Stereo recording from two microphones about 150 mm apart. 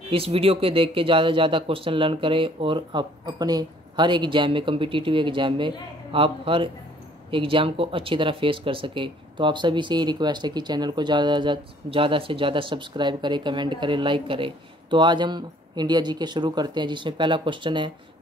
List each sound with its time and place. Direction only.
0.1 s speech: 40° right (ahead or behind)